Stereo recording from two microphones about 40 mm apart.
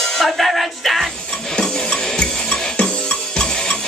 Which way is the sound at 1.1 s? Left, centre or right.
Centre.